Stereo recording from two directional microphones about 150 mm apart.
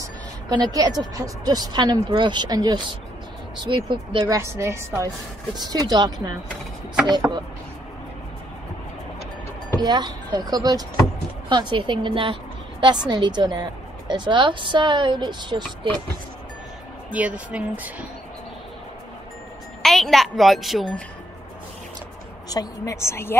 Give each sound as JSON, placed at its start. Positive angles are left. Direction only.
{"t": 0.5, "sound": "a woman's voice", "side_deg": -25}
{"t": 4.3, "sound": "speech", "side_deg": -20}
{"t": 9.8, "sound": "a woman's voice", "side_deg": -30}
{"t": 17.1, "sound": "speech", "side_deg": -10}
{"t": 19.8, "sound": "a woman's voice", "side_deg": 0}
{"t": 22.5, "sound": "a woman's voice", "side_deg": 25}